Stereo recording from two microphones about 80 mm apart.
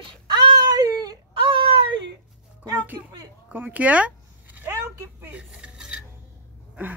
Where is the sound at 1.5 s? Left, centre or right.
Right.